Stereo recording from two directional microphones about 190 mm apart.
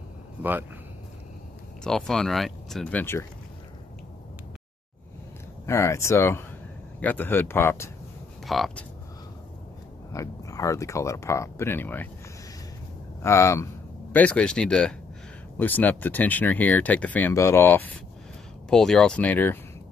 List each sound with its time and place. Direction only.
0.4 s a man's voice: 10° right (ahead or behind)
1.9 s speech: 5° left (ahead or behind)
5.7 s speech: 15° left (ahead or behind)
8.5 s speech: centre (ahead or behind)
10.1 s speech: 15° left (ahead or behind)
13.2 s speech: 15° left (ahead or behind)